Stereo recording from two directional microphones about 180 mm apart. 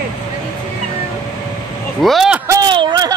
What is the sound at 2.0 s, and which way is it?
Speech, centre (ahead or behind).